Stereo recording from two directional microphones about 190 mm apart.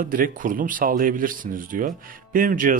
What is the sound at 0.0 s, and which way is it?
Speech, 45° right (ahead or behind).